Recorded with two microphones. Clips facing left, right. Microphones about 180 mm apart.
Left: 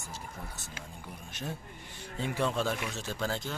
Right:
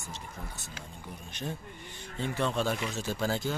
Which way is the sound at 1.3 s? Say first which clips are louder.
Right 2 dB; 5° left (ahead or behind).